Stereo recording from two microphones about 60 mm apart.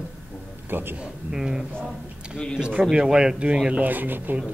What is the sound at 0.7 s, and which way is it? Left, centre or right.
Speech, right.